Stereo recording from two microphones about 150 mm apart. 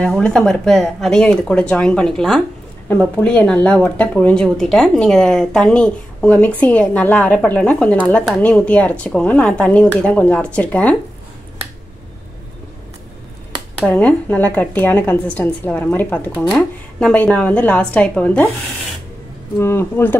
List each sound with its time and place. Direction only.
0.0 s speech: 5° left (ahead or behind)
13.8 s speech: 10° left (ahead or behind)
19.6 s speech: 15° left (ahead or behind)